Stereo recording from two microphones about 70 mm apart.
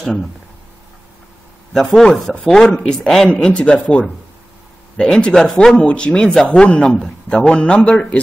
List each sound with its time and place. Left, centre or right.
0.0 s speech: centre
1.7 s a man's voice: centre